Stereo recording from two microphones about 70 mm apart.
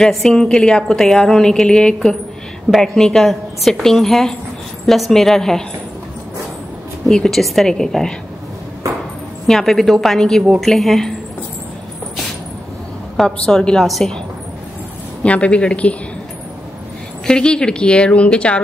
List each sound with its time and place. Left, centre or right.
0.0 s a woman's voice: centre
7.1 s a woman's voice: centre
9.5 s a woman's voice: centre
13.1 s a woman's voice: centre
15.2 s a woman's voice: centre
17.3 s a woman's voice: centre